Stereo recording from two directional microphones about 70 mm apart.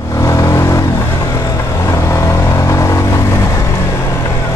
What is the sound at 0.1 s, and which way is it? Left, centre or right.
Vehicle, left.